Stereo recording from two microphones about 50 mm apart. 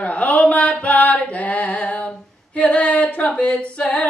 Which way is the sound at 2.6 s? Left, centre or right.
Left.